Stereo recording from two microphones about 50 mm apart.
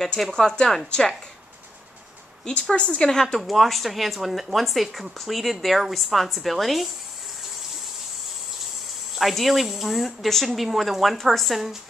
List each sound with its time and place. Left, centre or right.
0.0 s speech: centre
2.7 s speech: centre
3.3 s speech: centre
9.1 s speech: centre